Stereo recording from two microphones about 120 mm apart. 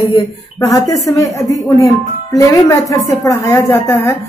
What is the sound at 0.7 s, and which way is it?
Speech, 30° left (ahead or behind).